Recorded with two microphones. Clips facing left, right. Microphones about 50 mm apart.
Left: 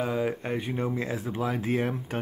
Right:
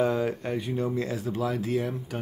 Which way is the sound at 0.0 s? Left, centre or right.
Centre.